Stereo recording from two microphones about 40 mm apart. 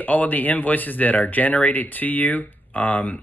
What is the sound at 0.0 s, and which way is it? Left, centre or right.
Speech, left.